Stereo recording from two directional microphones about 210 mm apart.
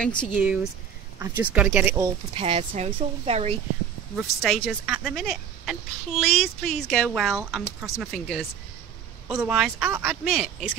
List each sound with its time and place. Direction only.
0.0 s a woman's voice: 5° left (ahead or behind)
0.3 s speech: 5° right (ahead or behind)
2.3 s speech: 25° right (ahead or behind)
4.4 s a woman's voice: centre (ahead or behind)